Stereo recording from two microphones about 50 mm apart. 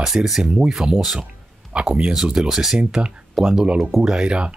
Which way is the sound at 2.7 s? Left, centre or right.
Centre.